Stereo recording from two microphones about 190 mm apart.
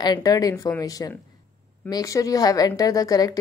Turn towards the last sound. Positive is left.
turn(degrees=20)  # may be behind; listen again after turning